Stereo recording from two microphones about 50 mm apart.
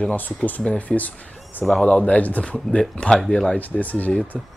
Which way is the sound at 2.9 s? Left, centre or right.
Centre.